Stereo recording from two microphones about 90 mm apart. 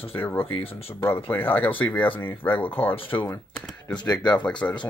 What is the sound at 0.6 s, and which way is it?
Speech, 90° left.